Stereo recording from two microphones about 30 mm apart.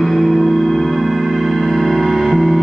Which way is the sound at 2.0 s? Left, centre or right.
Centre.